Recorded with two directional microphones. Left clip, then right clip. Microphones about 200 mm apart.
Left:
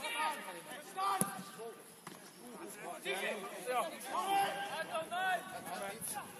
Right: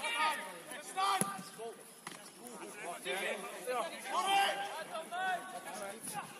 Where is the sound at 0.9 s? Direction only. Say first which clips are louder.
Right 3 dB; 35° right (ahead or behind).